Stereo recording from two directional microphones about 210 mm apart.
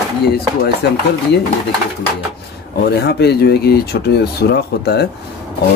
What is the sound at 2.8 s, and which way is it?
Speech, 50° left (ahead or behind).